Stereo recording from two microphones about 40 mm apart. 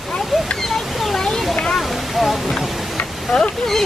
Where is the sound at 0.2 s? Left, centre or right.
Centre.